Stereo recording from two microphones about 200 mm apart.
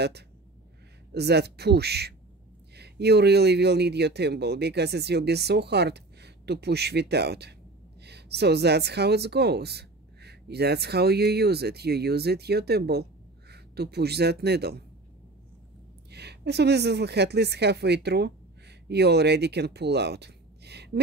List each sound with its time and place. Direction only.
1.1 s a woman's voice: 55° right (ahead or behind)
16.1 s a woman's voice: 55° right (ahead or behind)